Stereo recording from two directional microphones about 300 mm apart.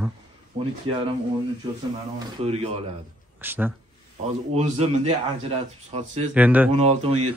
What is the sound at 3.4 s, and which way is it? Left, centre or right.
Speech, centre.